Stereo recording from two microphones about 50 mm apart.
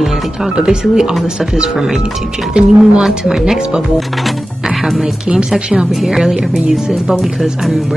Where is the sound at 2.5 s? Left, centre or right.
Right.